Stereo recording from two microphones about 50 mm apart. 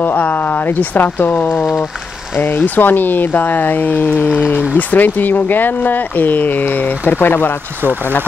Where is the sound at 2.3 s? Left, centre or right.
Left.